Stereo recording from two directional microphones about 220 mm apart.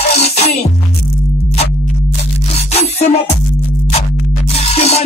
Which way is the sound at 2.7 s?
30° left (ahead or behind).